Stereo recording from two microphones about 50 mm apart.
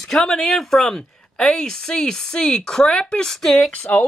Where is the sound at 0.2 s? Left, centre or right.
Centre.